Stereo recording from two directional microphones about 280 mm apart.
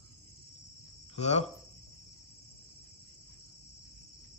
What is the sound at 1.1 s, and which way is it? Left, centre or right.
Speech, left.